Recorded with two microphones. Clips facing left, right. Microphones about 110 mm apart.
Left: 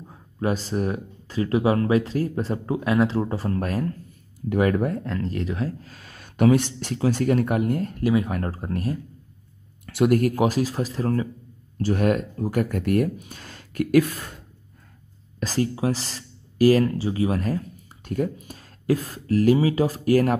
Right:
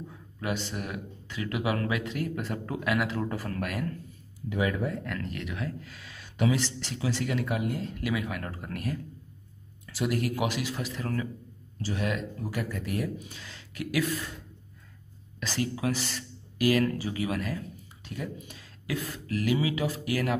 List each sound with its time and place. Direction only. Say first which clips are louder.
0.1 s speech: left 9 dB; 35° left (ahead or behind)
4.5 s speech: left 8 dB; 55° left (ahead or behind)
5.0 s speech: left 8 dB; 30° left (ahead or behind); by 8.0 s 50° left (ahead or behind)
8.0 s speech: left 10 dB; 35° left (ahead or behind)
9.8 s speech: left 10 dB; 55° left (ahead or behind); by 11.2 s 35° left (ahead or behind)
11.8 s speech: left 9 dB; 50° left (ahead or behind)
15.4 s speech: left 6 dB; 35° left (ahead or behind)